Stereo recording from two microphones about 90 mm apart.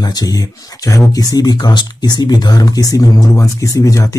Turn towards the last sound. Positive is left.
turn(degrees=40)  # may be behind; listen again after turning